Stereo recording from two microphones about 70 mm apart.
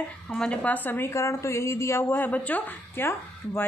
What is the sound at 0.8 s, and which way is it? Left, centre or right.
A woman's voice, left.